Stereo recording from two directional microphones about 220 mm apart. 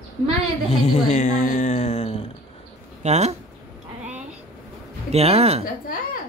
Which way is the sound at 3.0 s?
30° right (ahead or behind).